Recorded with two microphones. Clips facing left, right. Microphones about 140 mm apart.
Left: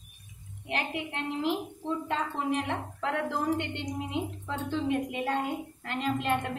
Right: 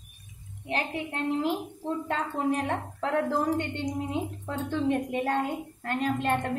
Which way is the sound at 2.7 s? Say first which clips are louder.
Right 3 dB; 35° right (ahead or behind).